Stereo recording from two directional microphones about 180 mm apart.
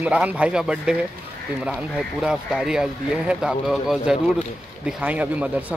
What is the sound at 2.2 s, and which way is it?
Speech, 5° right (ahead or behind).